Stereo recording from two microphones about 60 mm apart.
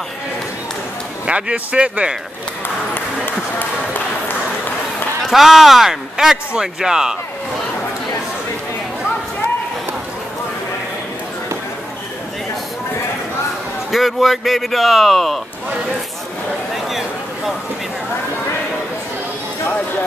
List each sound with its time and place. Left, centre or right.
1.2 s speech: centre
3.3 s a sound: left
5.2 s speech: centre
13.9 s speech: centre